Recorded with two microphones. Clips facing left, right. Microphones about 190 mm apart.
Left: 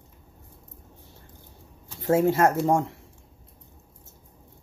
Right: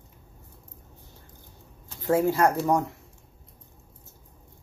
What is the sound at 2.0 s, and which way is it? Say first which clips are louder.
Speech: left 2 dB; 25° left (ahead or behind).